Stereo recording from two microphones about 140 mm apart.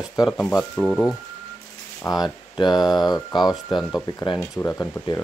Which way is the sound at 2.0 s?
30° left (ahead or behind).